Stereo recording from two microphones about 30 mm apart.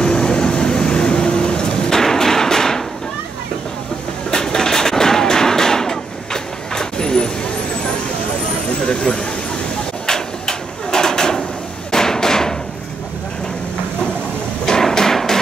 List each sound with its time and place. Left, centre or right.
0.0 s vehicle: left
1.9 s thump: centre
4.3 s gunshot: left
8.7 s a sound: left
11.9 s hammer: centre
14.7 s music: centre